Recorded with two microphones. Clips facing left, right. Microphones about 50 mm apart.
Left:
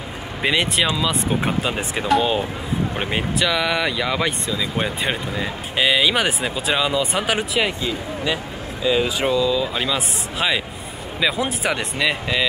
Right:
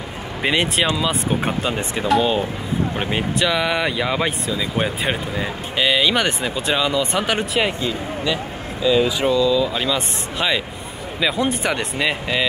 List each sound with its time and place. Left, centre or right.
0.4 s speech: centre
9.0 s speech: left
9.4 s speech: centre